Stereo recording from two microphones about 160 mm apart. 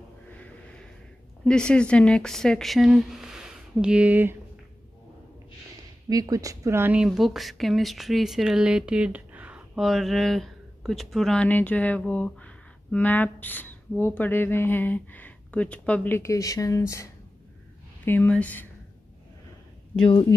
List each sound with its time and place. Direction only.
1.4 s a woman's voice: 5° left (ahead or behind); by 4.4 s 10° right (ahead or behind)
6.0 s speech: 20° right (ahead or behind)
7.1 s speech: centre (ahead or behind)